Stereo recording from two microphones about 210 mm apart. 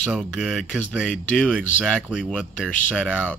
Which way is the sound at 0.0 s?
Centre (ahead or behind).